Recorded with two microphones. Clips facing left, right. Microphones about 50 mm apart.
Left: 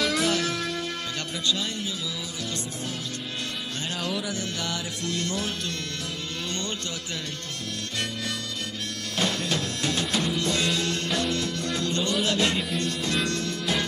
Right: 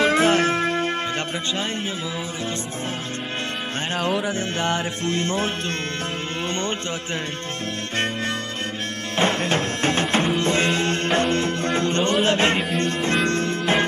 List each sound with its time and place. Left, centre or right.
0.0 s music: right
3.9 s music: right
9.1 s music: right